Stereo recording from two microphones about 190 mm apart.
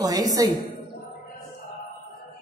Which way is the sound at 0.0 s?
20° right (ahead or behind).